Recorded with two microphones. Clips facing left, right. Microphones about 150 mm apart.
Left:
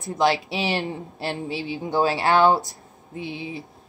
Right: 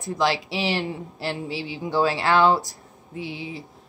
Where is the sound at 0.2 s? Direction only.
20° left (ahead or behind).